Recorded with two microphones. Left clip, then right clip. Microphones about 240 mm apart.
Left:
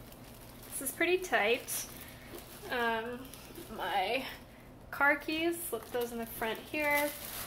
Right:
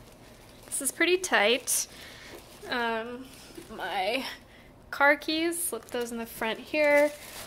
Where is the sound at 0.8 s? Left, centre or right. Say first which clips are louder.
Right 5 dB; right.